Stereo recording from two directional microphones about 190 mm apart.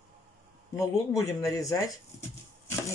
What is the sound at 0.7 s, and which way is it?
Speech, 15° left (ahead or behind).